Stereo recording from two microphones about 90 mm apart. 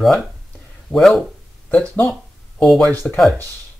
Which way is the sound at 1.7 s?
15° left (ahead or behind).